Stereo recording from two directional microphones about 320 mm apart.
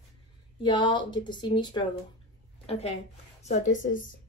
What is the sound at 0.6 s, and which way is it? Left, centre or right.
A woman's voice, centre.